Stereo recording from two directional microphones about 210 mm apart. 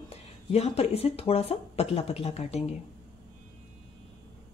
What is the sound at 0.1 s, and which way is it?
Speech, 30° left (ahead or behind).